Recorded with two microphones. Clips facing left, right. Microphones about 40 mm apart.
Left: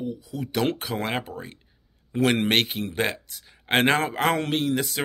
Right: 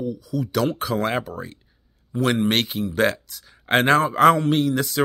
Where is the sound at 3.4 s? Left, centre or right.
Left.